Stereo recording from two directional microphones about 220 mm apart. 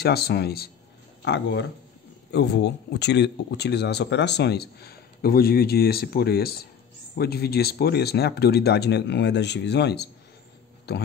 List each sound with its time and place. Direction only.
0.0 s speech: 45° left (ahead or behind)